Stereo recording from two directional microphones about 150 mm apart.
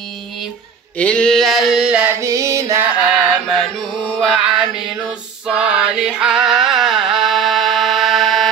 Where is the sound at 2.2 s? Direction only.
20° right (ahead or behind).